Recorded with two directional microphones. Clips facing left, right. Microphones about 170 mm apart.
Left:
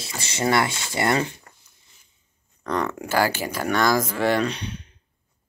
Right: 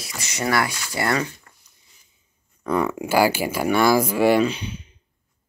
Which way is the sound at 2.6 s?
5° right (ahead or behind).